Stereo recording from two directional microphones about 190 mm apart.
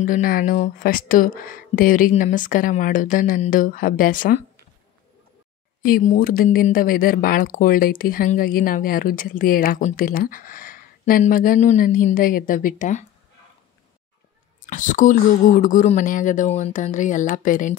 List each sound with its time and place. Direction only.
0.0 s speech: 45° left (ahead or behind)
5.8 s speech: 50° left (ahead or behind)
14.7 s speech: 40° left (ahead or behind)